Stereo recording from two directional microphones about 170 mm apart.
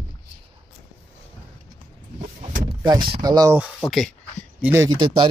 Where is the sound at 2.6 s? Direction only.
25° right (ahead or behind).